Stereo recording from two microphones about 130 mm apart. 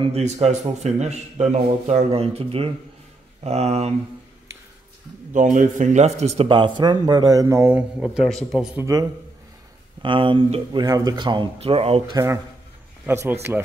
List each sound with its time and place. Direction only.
0.0 s a man's voice: 55° right (ahead or behind)
2.0 s a man's voice: 50° right (ahead or behind)
5.3 s speech: 75° right (ahead or behind); by 7.7 s 25° right (ahead or behind)
7.7 s speech: 5° right (ahead or behind)
8.7 s speech: 25° right (ahead or behind)
10.0 s speech: 40° right (ahead or behind)
12.1 s speech: 25° right (ahead or behind)